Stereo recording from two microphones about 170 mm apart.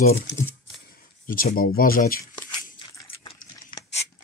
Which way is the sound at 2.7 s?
25° left (ahead or behind).